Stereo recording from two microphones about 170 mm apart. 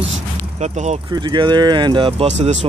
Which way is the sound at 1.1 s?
25° right (ahead or behind).